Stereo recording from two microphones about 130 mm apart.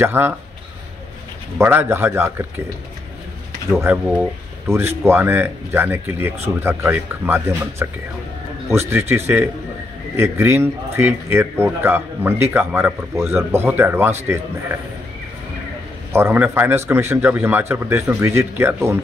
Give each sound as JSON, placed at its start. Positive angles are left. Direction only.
{"t": 0.0, "sound": "speech", "side_deg": -15}
{"t": 1.6, "sound": "speech", "side_deg": -15}
{"t": 3.7, "sound": "a man's voice", "side_deg": -10}
{"t": 16.1, "sound": "speech", "side_deg": -20}